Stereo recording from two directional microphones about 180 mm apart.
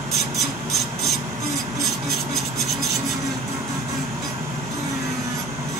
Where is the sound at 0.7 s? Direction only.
Centre (ahead or behind).